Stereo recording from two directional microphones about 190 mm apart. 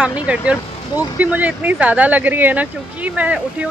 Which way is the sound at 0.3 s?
5° right (ahead or behind).